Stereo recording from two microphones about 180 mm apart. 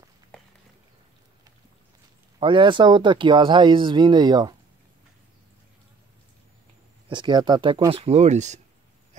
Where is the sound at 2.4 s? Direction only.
25° right (ahead or behind).